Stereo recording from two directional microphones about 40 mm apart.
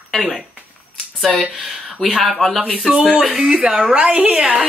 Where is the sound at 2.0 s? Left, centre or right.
Centre.